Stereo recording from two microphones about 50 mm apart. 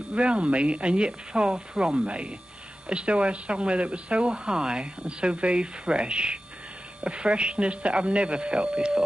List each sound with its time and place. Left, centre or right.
0.1 s speech: right